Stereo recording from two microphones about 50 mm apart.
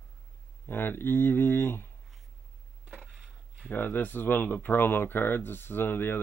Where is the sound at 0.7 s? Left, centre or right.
Left.